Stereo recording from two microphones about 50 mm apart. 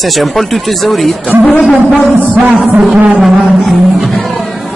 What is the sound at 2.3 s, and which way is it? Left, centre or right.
Music, right.